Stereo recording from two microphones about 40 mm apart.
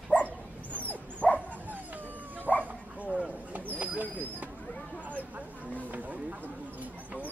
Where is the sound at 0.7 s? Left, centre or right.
Left.